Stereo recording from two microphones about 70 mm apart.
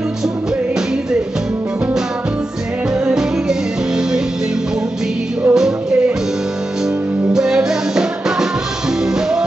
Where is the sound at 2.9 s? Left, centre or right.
Centre.